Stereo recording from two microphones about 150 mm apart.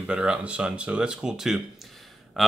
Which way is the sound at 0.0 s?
5° right (ahead or behind).